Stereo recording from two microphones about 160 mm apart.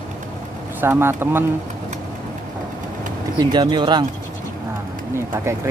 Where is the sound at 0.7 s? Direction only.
15° right (ahead or behind).